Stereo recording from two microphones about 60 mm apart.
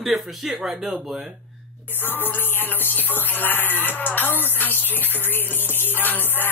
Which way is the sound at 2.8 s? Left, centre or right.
Left.